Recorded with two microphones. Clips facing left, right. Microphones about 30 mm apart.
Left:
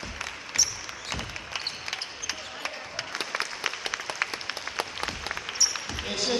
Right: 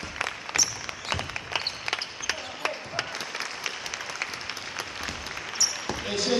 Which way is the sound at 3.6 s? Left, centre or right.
Centre.